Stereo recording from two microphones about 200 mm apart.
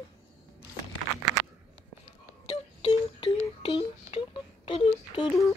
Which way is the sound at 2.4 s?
30° left (ahead or behind).